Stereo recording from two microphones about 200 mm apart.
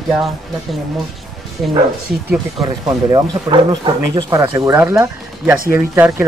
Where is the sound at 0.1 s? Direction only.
Centre (ahead or behind).